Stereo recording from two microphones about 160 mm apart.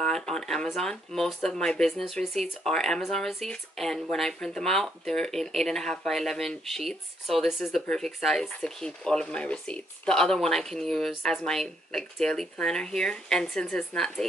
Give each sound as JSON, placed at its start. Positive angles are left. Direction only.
{"t": 0.0, "sound": "speech", "side_deg": 5}